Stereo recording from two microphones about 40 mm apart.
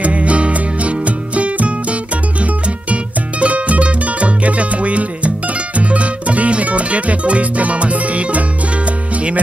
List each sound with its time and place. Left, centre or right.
0.0 s music: right